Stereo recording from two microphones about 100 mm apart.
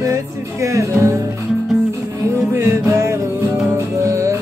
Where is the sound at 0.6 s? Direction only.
30° right (ahead or behind).